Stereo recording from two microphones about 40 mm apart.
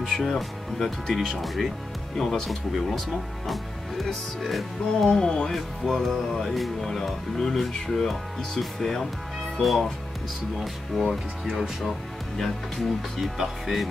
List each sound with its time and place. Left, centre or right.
0.0 s speech: centre
5.1 s speech: centre
11.4 s speech: centre
12.4 s speech: centre
13.2 s speech: centre